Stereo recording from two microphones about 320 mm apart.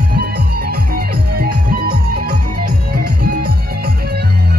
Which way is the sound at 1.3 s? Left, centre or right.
Right.